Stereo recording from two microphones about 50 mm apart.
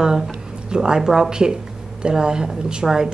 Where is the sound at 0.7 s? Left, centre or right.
Centre.